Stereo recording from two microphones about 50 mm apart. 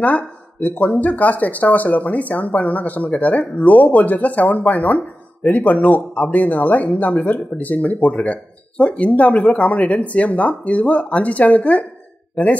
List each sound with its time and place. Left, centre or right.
0.0 s speech: left